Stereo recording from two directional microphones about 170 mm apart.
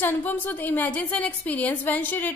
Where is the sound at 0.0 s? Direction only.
10° left (ahead or behind).